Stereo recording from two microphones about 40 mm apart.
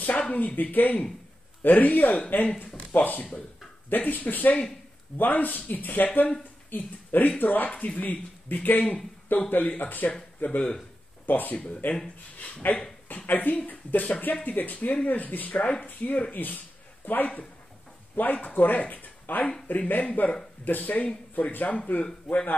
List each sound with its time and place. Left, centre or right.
0.3 s speech: left
11.5 s speech: left
12.6 s speech: left
21.7 s speech: left
22.3 s a man's voice: centre